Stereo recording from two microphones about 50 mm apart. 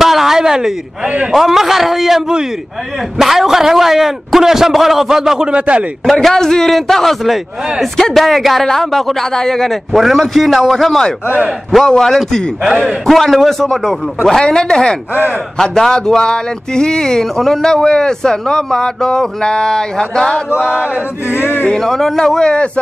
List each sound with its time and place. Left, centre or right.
0.0 s a sound: centre
1.0 s a man's voice: right
1.3 s a man's voice: centre
6.0 s speech: centre
12.6 s a man's voice: centre
13.0 s speech: centre
20.6 s a man's voice: centre
21.4 s speech: left
21.6 s speech: centre